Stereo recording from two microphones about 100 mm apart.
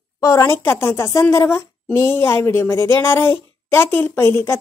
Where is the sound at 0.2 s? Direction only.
30° left (ahead or behind).